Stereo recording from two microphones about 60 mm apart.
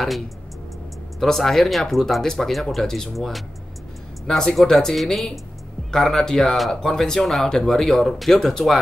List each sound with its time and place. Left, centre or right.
1.2 s speech: centre